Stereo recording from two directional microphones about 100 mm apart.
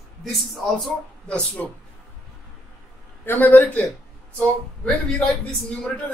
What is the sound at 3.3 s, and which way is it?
Speech, 15° left (ahead or behind).